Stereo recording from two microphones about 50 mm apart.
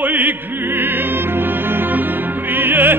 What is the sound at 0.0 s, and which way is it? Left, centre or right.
Opera, right.